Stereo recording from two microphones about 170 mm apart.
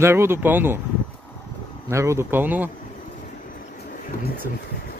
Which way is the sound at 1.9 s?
15° right (ahead or behind).